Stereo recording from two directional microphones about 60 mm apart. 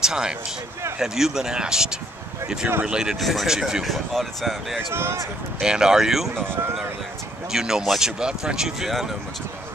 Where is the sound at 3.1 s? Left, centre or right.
Centre.